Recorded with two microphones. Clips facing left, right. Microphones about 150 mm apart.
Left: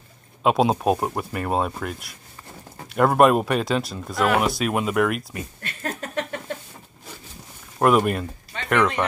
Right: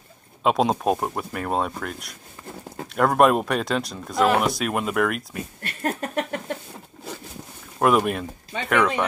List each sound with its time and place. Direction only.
0.4 s speech: centre (ahead or behind)
5.6 s a sound: 35° right (ahead or behind)
7.8 s speech: centre (ahead or behind)